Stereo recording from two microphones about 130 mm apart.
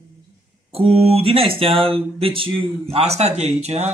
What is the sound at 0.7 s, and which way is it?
Speech, 50° right (ahead or behind).